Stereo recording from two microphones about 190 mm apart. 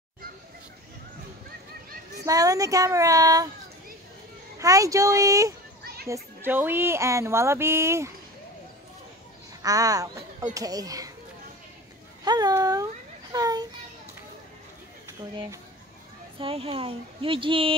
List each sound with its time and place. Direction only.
2.2 s speech: 20° right (ahead or behind)
4.6 s speech: 15° right (ahead or behind)
9.6 s speech: 20° right (ahead or behind)
12.3 s a child's voice: 20° right (ahead or behind)
16.3 s speech: 30° right (ahead or behind)